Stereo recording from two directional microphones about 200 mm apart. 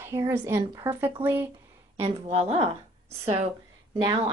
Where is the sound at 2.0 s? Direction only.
30° right (ahead or behind).